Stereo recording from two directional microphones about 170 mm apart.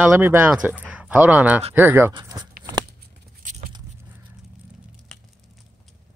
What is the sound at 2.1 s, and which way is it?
Speech, 25° right (ahead or behind).